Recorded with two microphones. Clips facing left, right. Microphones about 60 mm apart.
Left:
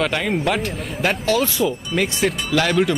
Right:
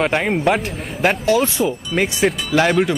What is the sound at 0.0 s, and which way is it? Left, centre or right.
Speech, right.